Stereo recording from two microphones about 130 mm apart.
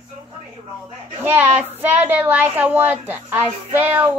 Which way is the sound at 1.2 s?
15° right (ahead or behind).